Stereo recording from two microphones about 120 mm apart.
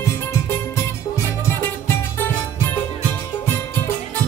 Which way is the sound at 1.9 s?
15° left (ahead or behind).